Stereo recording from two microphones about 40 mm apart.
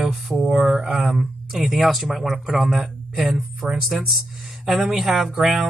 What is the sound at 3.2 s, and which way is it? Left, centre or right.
Speech, right.